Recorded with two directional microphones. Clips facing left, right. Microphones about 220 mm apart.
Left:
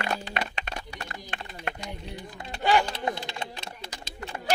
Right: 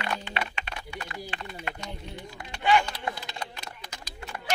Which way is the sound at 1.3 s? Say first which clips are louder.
Left 1 dB; 45° left (ahead or behind).